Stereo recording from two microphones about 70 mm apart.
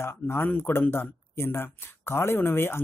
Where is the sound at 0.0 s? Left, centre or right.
Left.